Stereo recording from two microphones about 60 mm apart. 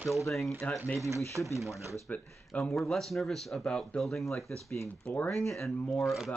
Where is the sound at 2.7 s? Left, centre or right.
Centre.